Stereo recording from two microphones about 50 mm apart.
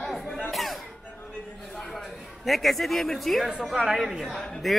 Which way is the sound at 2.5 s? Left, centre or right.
Centre.